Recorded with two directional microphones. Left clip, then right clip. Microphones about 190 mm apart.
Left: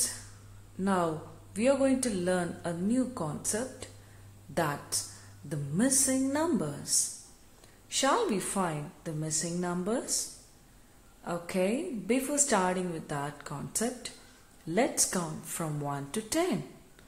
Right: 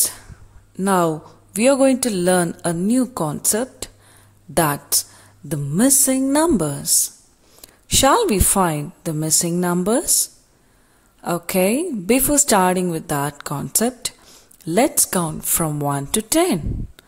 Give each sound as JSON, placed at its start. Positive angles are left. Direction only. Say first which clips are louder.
{"t": 0.7, "sound": "a man's voice", "louder": "right 12 dB", "side_deg": -50}
{"t": 11.2, "sound": "a man's voice", "louder": "right 12 dB", "side_deg": -55}